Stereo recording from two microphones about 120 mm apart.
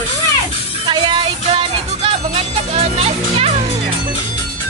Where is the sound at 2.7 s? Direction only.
55° right (ahead or behind).